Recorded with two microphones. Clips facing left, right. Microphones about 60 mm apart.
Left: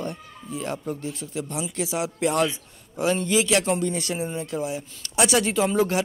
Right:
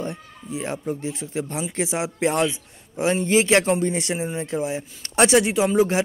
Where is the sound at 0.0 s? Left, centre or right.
Right.